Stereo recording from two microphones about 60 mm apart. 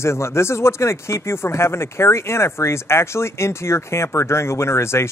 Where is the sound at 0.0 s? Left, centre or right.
Left.